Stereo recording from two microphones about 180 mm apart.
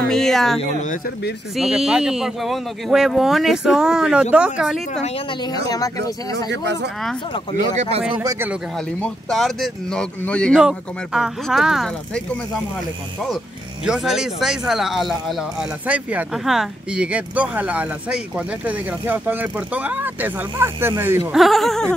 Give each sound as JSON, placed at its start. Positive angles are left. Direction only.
{"t": 0.1, "sound": "speech", "side_deg": 0}
{"t": 1.6, "sound": "speech", "side_deg": -5}
{"t": 5.5, "sound": "speech", "side_deg": 20}
{"t": 6.3, "sound": "speech", "side_deg": -75}
{"t": 7.7, "sound": "speech", "side_deg": -40}
{"t": 8.1, "sound": "speech", "side_deg": -20}
{"t": 9.0, "sound": "speech", "side_deg": 0}
{"t": 13.8, "sound": "speech", "side_deg": 0}
{"t": 21.4, "sound": "speech", "side_deg": 0}